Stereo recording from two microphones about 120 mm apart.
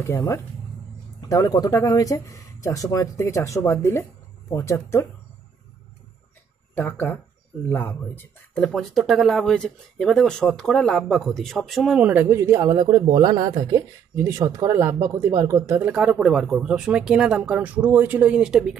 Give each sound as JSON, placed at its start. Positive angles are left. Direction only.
{"t": 1.3, "sound": "speech", "side_deg": 30}
{"t": 6.7, "sound": "speech", "side_deg": 15}
{"t": 8.6, "sound": "speech", "side_deg": 0}
{"t": 12.1, "sound": "speech", "side_deg": -20}
{"t": 12.8, "sound": "speech", "side_deg": -35}
{"t": 15.9, "sound": "speech", "side_deg": -5}